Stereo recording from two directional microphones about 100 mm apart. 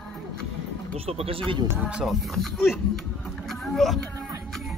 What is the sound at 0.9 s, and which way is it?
Speech, 75° right (ahead or behind).